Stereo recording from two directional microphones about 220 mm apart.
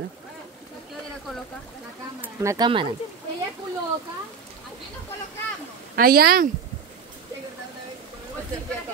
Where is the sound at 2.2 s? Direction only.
15° right (ahead or behind).